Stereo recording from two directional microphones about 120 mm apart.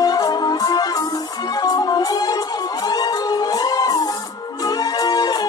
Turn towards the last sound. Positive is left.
turn(degrees=35)  # may be behind; listen again after turning